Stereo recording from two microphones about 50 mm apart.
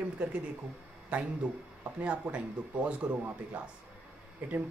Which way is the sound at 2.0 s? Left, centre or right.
Right.